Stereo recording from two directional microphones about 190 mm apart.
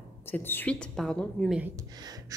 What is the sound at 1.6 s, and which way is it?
Speech, 20° right (ahead or behind).